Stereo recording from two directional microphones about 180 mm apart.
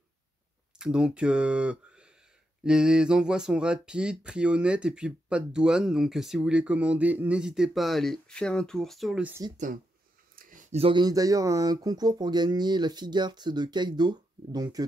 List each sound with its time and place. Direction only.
0.7 s speech: 5° right (ahead or behind)
10.3 s a sound: 50° right (ahead or behind)
10.7 s speech: 30° right (ahead or behind)